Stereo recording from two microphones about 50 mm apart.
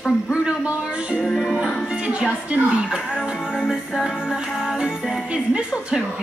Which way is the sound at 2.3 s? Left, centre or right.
Centre.